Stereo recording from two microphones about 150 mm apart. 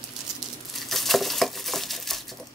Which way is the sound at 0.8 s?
Centre (ahead or behind).